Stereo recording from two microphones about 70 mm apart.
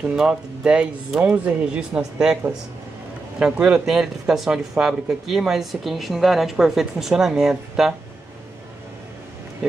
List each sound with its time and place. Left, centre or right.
0.1 s speech: centre
3.3 s speech: centre